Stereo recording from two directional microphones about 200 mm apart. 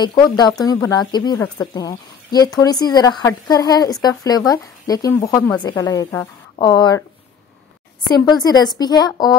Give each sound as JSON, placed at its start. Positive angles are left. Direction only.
{"t": 0.0, "sound": "speech", "side_deg": 20}
{"t": 8.5, "sound": "speech", "side_deg": 20}